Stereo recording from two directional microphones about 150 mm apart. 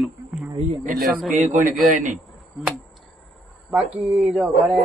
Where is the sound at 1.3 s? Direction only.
55° right (ahead or behind).